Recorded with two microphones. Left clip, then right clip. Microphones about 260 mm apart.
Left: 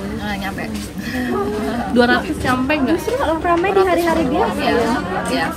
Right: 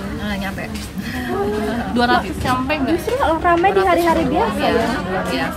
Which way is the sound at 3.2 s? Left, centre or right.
Right.